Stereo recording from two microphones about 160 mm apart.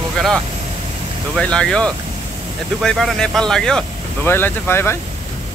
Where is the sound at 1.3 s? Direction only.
5° left (ahead or behind).